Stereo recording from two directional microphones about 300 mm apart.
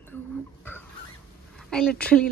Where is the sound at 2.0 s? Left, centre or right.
Centre.